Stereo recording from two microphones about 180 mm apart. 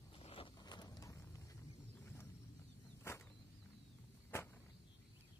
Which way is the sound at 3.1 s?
15° left (ahead or behind).